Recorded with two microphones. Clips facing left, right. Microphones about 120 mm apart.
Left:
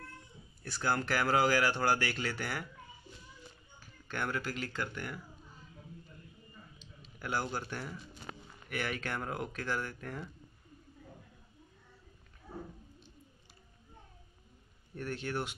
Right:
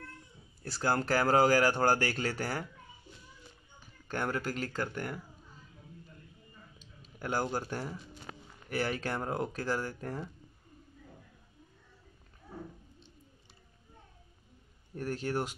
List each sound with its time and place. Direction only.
0.7 s speech: 35° right (ahead or behind)
4.1 s speech: 40° right (ahead or behind)
6.8 s a sound: 45° right (ahead or behind)
7.5 s speech: 40° right (ahead or behind)
15.0 s speech: 40° right (ahead or behind)